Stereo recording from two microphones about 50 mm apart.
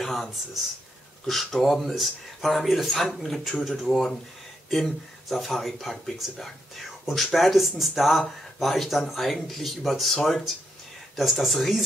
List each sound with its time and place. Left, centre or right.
0.0 s speech: centre